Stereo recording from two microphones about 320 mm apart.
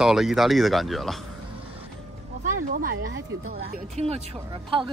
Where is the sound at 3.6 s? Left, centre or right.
Centre.